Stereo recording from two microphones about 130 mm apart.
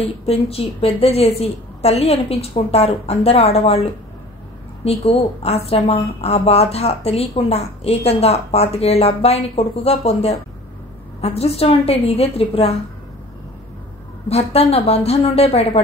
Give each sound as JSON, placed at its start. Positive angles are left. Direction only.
{"t": 0.0, "sound": "a woman's voice", "side_deg": 50}
{"t": 4.8, "sound": "a woman's voice", "side_deg": 50}
{"t": 14.3, "sound": "a woman's voice", "side_deg": 50}